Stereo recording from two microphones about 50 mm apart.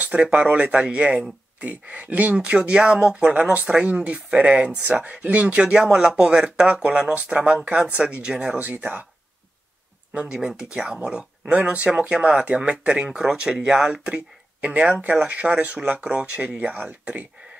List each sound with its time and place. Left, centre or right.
0.0 s speech: right
4.8 s speech: right
8.5 s speech: right
10.1 s speech: centre
14.0 s speech: right